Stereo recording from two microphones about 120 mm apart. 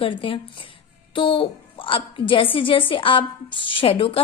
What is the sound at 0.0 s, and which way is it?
A woman's voice, 50° left (ahead or behind).